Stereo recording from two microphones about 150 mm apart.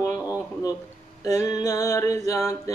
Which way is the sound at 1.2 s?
25° left (ahead or behind).